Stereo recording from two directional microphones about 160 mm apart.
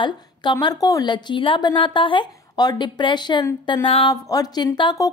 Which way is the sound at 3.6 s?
30° left (ahead or behind).